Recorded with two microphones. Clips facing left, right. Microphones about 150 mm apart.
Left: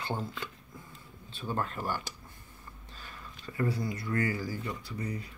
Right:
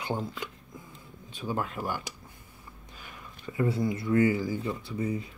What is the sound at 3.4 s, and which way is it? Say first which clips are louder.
Speech: right 4 dB; 20° right (ahead or behind).